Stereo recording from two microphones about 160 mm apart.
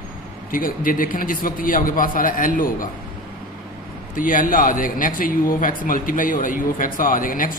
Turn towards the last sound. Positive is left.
turn(degrees=60)  # may be behind; listen again after turning